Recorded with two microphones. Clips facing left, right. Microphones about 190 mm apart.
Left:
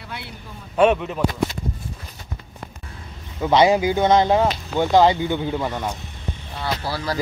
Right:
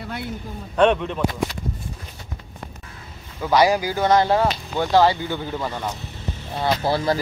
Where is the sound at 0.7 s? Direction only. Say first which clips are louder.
Left 1 dB; 5° left (ahead or behind).